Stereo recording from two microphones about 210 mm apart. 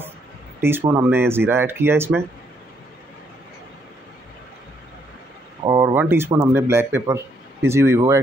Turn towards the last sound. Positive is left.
turn(degrees=-10)  # may be behind; listen again after turning